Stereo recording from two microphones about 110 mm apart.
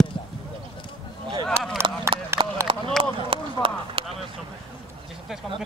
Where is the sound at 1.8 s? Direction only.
25° right (ahead or behind).